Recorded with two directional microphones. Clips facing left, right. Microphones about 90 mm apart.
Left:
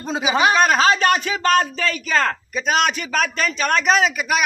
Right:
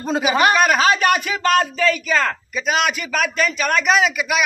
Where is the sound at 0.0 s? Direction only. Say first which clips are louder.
Right 3 dB; 5° right (ahead or behind).